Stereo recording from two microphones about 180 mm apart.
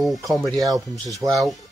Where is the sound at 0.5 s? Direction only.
20° right (ahead or behind).